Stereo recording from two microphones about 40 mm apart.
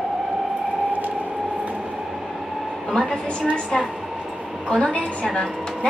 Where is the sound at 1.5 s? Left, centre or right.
Right.